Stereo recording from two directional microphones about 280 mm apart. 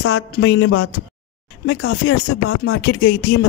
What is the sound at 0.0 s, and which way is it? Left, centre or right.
Speech, left.